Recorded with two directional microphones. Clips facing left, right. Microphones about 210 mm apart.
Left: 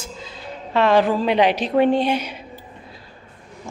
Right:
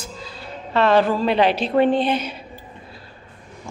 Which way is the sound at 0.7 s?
15° left (ahead or behind).